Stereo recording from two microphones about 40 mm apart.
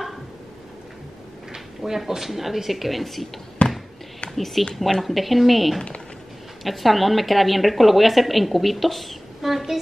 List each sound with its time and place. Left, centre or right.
1.5 s a woman's voice: centre
3.6 s basketball bounce: left
4.4 s a woman's voice: centre